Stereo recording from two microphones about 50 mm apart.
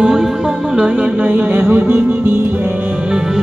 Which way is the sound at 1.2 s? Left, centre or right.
Right.